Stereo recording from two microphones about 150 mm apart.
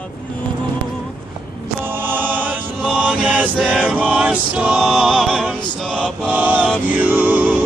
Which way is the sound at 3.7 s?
5° right (ahead or behind).